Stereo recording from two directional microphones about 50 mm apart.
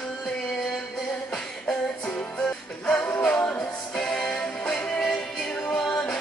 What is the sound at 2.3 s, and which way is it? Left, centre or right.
Music, centre.